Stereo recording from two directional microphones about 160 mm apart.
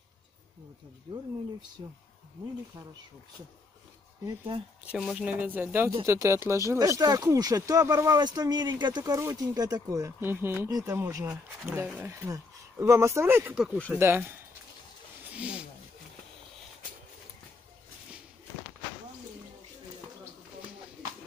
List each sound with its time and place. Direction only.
4.8 s speech: 5° right (ahead or behind); by 11.3 s 20° right (ahead or behind)
11.6 s speech: 10° right (ahead or behind)
15.3 s snake: 10° right (ahead or behind)